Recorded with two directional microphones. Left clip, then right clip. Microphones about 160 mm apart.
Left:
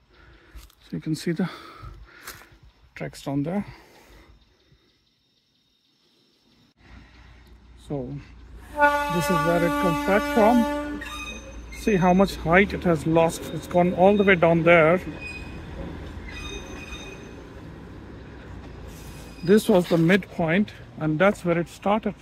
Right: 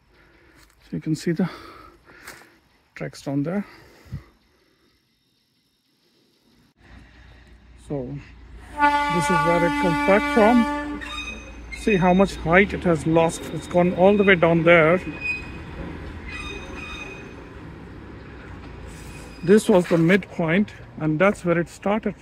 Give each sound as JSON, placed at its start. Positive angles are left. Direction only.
{"t": 0.8, "sound": "a sound", "side_deg": 0}
{"t": 2.9, "sound": "speech", "side_deg": 5}
{"t": 7.8, "sound": "speech", "side_deg": 10}
{"t": 8.7, "sound": "speech", "side_deg": -15}
{"t": 9.5, "sound": "speech", "side_deg": 0}
{"t": 19.4, "sound": "speech", "side_deg": 0}